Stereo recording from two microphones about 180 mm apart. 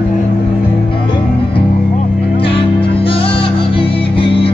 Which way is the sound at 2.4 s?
30° left (ahead or behind).